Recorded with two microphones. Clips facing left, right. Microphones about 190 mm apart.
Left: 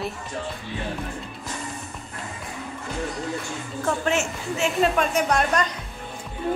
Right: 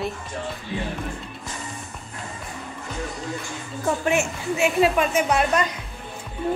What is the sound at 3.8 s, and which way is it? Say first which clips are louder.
A woman's voice: right 2 dB; 15° right (ahead or behind).